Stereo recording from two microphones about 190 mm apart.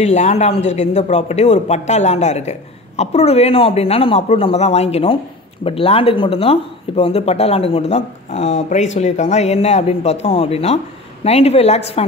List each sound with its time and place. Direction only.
0.0 s speech: 35° left (ahead or behind)